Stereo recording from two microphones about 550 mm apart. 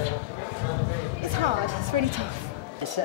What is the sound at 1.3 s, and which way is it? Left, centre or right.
Speech, right.